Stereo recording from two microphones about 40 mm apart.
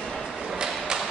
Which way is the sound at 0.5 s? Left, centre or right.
Centre.